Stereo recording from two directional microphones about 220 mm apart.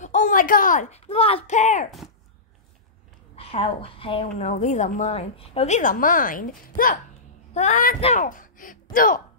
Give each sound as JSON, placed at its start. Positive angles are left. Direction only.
{"t": 0.0, "sound": "speech", "side_deg": 35}
{"t": 1.9, "sound": "speech", "side_deg": 0}
{"t": 3.3, "sound": "a woman's voice", "side_deg": 25}